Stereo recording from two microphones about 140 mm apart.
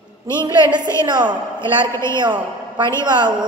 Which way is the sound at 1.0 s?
35° right (ahead or behind).